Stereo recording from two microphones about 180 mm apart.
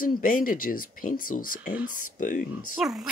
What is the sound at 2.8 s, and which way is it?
Speech, centre (ahead or behind).